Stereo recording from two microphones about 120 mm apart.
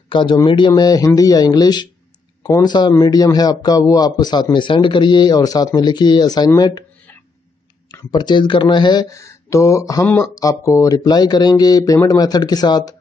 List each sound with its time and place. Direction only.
0.1 s a man's voice: 45° left (ahead or behind)
7.9 s a man's voice: 35° left (ahead or behind)
9.0 s a man's voice: 25° left (ahead or behind)